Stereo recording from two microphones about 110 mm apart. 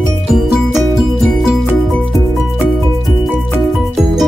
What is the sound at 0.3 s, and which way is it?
Music, centre (ahead or behind).